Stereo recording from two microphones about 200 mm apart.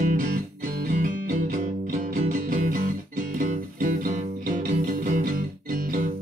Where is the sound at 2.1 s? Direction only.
40° right (ahead or behind).